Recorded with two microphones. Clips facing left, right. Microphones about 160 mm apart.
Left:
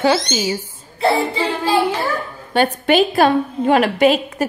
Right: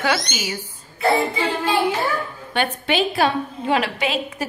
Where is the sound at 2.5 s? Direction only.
40° left (ahead or behind).